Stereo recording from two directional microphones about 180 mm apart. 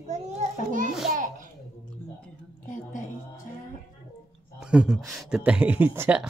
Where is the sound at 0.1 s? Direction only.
45° right (ahead or behind).